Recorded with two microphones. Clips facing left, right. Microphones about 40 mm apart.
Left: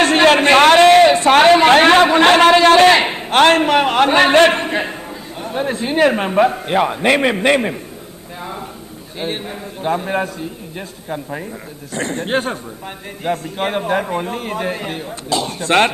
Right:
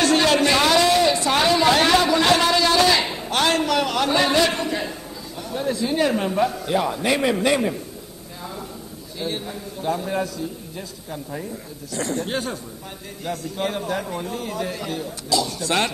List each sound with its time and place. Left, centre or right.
0.0 s a sound: left
5.4 s a man's voice: left
9.2 s a man's voice: left